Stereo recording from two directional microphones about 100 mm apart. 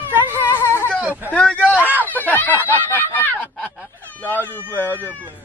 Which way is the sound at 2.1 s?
15° left (ahead or behind).